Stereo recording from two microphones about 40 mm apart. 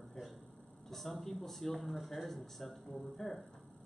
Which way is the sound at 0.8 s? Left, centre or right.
Centre.